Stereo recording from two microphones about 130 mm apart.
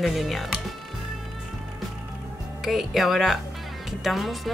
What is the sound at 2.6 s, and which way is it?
A woman's voice, centre (ahead or behind).